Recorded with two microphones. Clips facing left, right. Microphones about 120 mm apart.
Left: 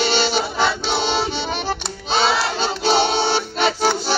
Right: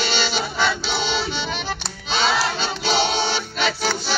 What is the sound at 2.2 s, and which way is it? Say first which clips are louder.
Music: left 1 dB; 25° left (ahead or behind).